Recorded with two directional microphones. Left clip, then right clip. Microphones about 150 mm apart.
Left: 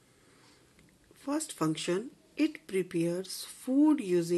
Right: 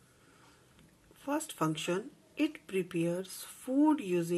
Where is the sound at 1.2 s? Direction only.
35° left (ahead or behind).